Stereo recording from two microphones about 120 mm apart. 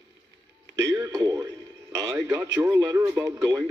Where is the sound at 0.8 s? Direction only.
30° right (ahead or behind).